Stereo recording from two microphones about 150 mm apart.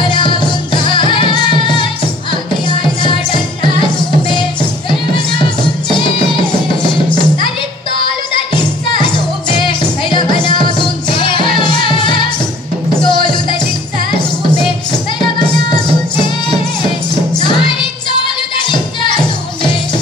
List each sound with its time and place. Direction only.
0.0 s music: 35° left (ahead or behind)
8.9 s music: 30° left (ahead or behind)
15.3 s music: 30° left (ahead or behind)
18.7 s music: 30° left (ahead or behind)